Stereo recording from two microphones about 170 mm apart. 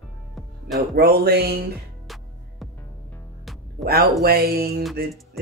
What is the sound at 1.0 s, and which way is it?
Music, 65° right (ahead or behind).